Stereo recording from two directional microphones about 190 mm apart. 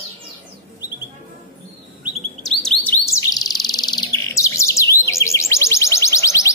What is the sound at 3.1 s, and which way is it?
Bird, 20° left (ahead or behind).